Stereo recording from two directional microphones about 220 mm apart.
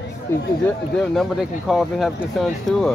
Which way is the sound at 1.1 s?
Centre (ahead or behind).